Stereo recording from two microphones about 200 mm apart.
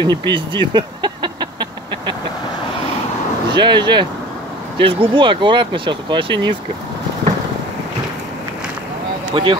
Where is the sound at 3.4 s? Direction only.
20° right (ahead or behind).